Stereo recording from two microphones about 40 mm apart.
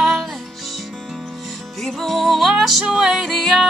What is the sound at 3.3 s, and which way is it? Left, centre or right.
Music, centre.